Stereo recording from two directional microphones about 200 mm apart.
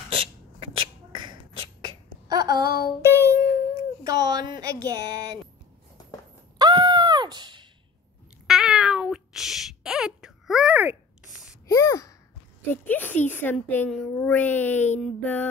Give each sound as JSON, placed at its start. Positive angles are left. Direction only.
{"t": 0.1, "sound": "beatboxing", "side_deg": -25}
{"t": 1.9, "sound": "a sound", "side_deg": -20}
{"t": 3.0, "sound": "music", "side_deg": -15}
{"t": 4.0, "sound": "speech", "side_deg": -20}
{"t": 6.6, "sound": "groan", "side_deg": -20}
{"t": 8.5, "sound": "meow", "side_deg": 0}
{"t": 11.6, "sound": "a sound", "side_deg": 15}
{"t": 12.8, "sound": "speech", "side_deg": 10}